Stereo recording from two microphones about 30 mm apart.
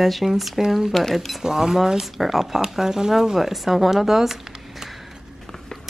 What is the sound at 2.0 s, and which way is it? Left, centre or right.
Speech, centre.